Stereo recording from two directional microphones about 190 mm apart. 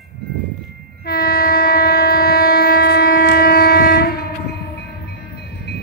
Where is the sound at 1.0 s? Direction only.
50° left (ahead or behind).